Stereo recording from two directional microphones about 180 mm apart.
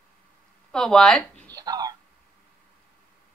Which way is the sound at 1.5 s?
20° right (ahead or behind).